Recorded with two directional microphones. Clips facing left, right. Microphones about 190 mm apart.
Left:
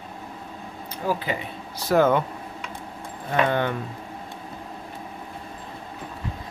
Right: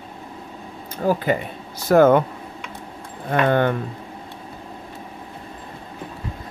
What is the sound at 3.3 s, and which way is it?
Speech, 50° right (ahead or behind).